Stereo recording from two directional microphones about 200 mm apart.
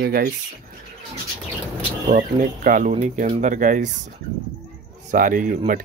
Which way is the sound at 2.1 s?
40° right (ahead or behind).